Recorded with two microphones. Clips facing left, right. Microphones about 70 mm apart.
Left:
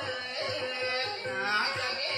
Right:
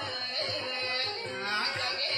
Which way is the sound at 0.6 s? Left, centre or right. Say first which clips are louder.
Left 3 dB; centre.